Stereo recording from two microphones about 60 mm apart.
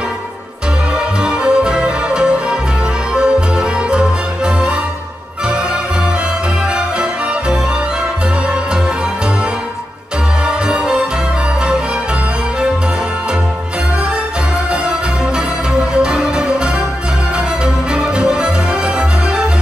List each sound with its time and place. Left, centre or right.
0.9 s music: centre
10.4 s music: centre
14.7 s music: centre
17.9 s music: centre